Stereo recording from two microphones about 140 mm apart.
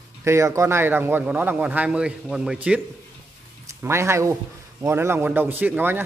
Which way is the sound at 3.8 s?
20° right (ahead or behind).